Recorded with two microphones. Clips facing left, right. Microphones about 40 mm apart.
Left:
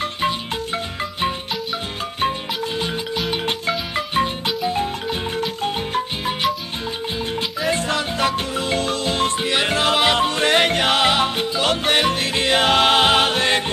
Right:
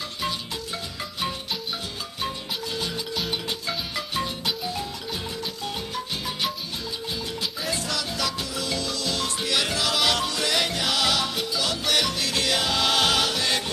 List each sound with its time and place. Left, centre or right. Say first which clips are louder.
3.4 s music: left 7 dB; left
5.4 s music: left 8 dB; left
7.6 s music: left 9 dB; left